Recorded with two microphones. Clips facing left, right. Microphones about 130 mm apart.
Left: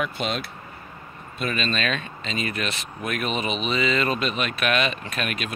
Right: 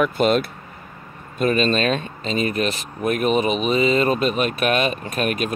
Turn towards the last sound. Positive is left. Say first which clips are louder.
# right 7 dB
turn(degrees=-40)  # may be behind; listen again after turning